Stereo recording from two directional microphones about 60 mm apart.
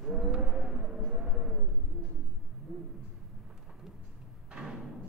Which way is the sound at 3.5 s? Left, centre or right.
Centre.